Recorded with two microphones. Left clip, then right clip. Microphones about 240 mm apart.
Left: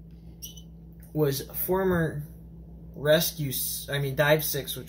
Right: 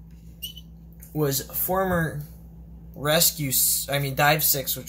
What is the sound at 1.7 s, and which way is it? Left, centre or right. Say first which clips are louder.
Speech: right 2 dB; right.